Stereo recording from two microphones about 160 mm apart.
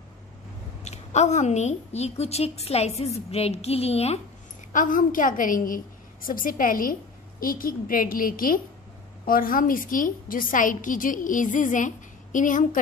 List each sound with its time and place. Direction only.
0.8 s a woman's voice: 45° left (ahead or behind)
4.7 s a woman's voice: 55° left (ahead or behind)